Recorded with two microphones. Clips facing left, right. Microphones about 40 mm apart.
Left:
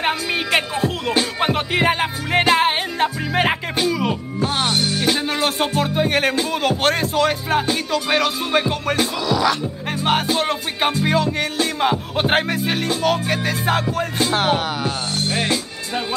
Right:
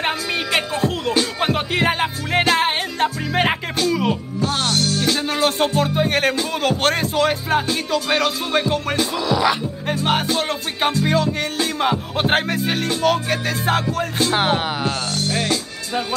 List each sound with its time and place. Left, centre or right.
0.0 s music: centre
4.4 s music: centre
5.2 s music: centre
9.2 s music: centre
9.8 s music: centre
14.3 s music: centre
15.1 s music: left